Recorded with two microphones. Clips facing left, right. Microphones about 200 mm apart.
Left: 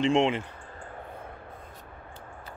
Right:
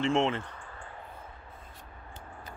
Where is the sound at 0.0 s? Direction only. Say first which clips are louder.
Left 4 dB; 15° left (ahead or behind).